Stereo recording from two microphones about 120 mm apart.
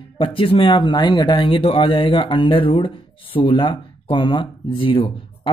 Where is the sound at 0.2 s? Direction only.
50° left (ahead or behind).